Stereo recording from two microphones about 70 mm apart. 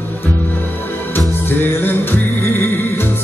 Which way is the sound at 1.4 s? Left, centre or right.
Left.